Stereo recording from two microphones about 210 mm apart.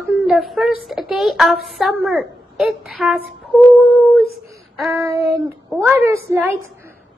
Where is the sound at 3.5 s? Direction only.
Centre (ahead or behind).